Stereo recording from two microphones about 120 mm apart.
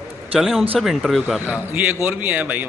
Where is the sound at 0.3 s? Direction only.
Centre (ahead or behind).